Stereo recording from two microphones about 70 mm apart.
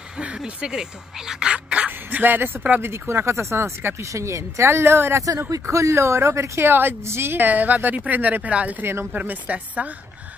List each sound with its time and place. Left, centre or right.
0.2 s speech: centre
2.9 s a woman's voice: right
5.5 s a woman's voice: right